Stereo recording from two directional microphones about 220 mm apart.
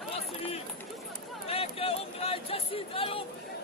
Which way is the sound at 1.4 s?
25° left (ahead or behind).